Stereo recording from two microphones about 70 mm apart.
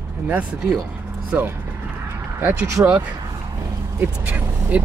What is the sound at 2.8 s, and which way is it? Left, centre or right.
Speech, right.